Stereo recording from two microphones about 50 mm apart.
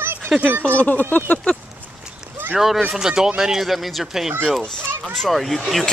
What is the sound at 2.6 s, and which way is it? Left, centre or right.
Speech, centre.